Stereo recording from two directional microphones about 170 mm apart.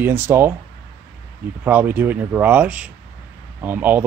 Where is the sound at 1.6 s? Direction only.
10° right (ahead or behind).